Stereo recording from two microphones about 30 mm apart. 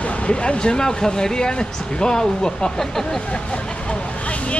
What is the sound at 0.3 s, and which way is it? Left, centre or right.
Speech, left.